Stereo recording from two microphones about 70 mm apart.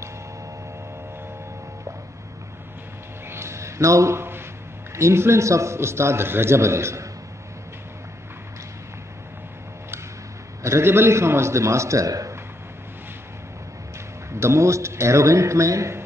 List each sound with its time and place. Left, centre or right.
3.3 s a sound: right
4.9 s a man's voice: right
10.6 s a man's voice: right
14.3 s a man's voice: right